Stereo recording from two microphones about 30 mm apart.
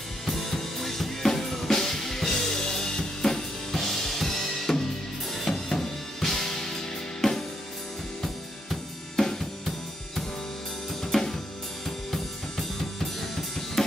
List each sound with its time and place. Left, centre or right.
0.5 s drum kit: centre
5.5 s music: centre
8.2 s drum kit: centre
11.1 s drum kit: centre
13.8 s drum kit: centre